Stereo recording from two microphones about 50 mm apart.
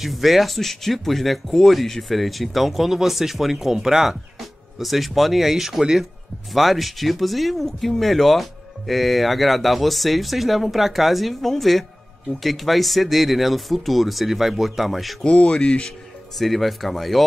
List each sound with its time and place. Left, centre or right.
0.0 s speech: centre
15.2 s speech: centre
16.3 s speech: centre